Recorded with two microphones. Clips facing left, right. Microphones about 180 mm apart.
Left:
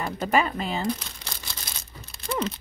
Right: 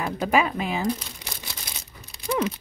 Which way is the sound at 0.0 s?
5° right (ahead or behind).